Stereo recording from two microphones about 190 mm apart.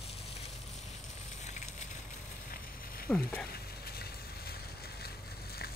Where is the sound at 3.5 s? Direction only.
55° left (ahead or behind).